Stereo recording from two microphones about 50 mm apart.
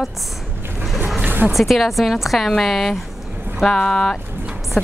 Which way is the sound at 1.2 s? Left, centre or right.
Right.